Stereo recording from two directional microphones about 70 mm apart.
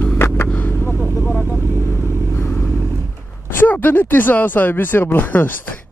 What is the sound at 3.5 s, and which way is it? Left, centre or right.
Speech, left.